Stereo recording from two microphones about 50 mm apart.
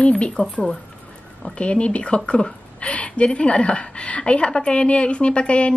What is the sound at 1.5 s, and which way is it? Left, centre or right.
Speech, left.